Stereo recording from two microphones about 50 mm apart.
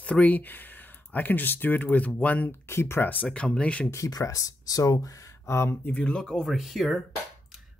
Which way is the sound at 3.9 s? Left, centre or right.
Left.